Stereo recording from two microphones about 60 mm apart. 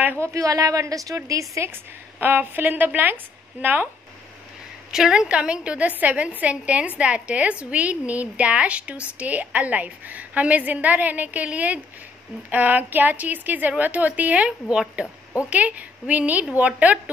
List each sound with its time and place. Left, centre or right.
0.2 s a woman's voice: right
1.6 s a woman's voice: right
4.9 s a woman's voice: centre